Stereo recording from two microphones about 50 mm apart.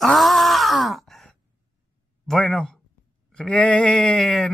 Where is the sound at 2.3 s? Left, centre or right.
Centre.